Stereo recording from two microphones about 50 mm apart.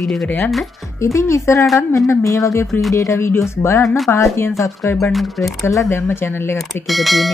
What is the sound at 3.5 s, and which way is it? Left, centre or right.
Speech, left.